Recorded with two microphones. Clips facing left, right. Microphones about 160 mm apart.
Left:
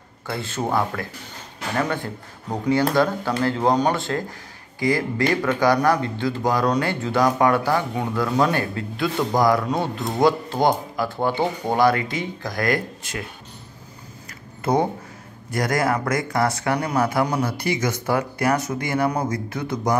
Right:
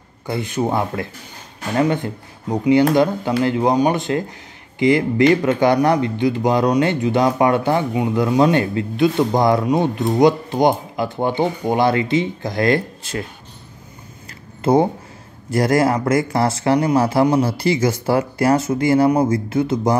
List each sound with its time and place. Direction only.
0.3 s speech: 15° right (ahead or behind)
14.6 s speech: 25° right (ahead or behind)